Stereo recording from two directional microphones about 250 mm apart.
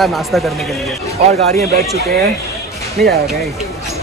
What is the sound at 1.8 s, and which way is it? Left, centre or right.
Speech, right.